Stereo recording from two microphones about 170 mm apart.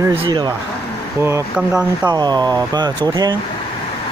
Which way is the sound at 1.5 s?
5° right (ahead or behind).